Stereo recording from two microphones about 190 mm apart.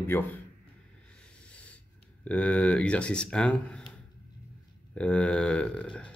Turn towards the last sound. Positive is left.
turn(degrees=5)  # may be behind; listen again after turning